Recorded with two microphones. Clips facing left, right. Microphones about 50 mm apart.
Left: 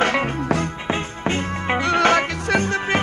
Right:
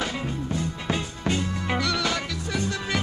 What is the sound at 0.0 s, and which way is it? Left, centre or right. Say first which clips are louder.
Music: left 9 dB; left.